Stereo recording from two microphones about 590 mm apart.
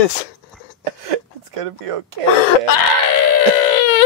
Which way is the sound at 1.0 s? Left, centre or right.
Right.